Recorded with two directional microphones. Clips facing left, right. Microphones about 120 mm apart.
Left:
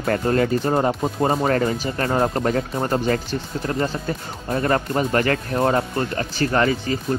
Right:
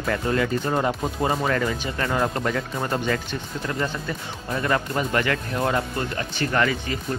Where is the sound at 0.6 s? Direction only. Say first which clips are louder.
Left 4 dB; 30° left (ahead or behind).